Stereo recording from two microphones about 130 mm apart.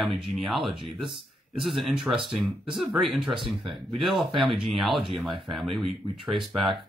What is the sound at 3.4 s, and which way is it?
Speech, 45° right (ahead or behind).